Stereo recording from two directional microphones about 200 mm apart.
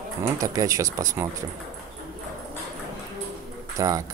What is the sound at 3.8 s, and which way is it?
Speech, 15° right (ahead or behind).